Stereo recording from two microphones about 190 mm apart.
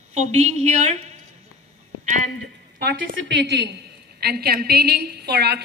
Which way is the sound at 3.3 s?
65° right (ahead or behind).